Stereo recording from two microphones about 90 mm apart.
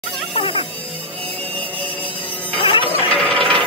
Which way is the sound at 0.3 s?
90° left.